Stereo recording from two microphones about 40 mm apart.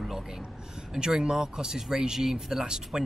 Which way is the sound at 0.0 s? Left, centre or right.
Centre.